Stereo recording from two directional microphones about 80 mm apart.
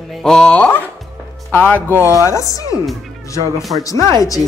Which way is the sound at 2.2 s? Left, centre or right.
Left.